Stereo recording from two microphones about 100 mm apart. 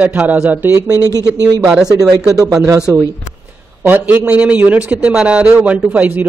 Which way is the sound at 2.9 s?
25° right (ahead or behind).